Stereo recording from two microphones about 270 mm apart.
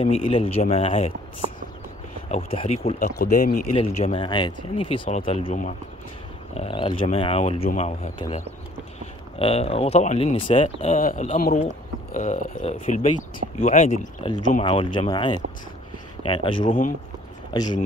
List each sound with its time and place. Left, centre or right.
0.0 s speech: centre
2.3 s speech: left